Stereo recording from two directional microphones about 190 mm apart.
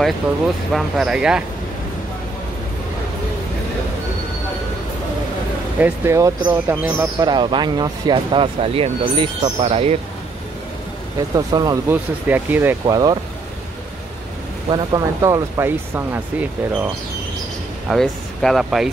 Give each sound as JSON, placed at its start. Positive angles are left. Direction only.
{"t": 0.7, "sound": "speech", "side_deg": 0}
{"t": 5.8, "sound": "speech", "side_deg": -10}
{"t": 11.1, "sound": "speech", "side_deg": -20}
{"t": 14.7, "sound": "speech", "side_deg": -20}
{"t": 17.8, "sound": "speech", "side_deg": 0}